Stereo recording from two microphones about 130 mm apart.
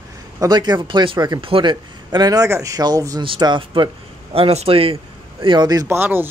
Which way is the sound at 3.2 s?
40° right (ahead or behind).